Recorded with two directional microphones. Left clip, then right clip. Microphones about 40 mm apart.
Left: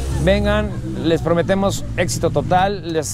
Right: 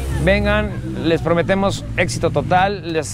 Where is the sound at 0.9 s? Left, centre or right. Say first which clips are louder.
Even; left.